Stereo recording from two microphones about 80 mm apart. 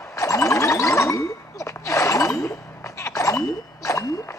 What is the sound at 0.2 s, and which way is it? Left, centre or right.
Boing, left.